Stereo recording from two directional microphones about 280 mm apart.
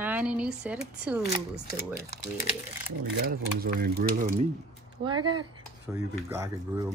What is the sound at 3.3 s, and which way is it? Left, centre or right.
Speech, right.